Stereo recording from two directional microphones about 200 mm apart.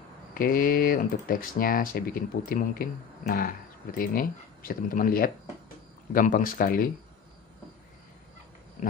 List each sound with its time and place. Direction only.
0.3 s speech: 45° left (ahead or behind)